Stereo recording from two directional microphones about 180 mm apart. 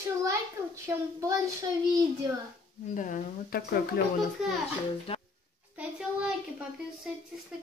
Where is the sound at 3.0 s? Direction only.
45° left (ahead or behind).